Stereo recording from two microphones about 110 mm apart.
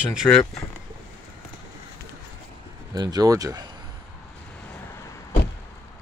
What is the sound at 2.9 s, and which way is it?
Speech, 40° right (ahead or behind).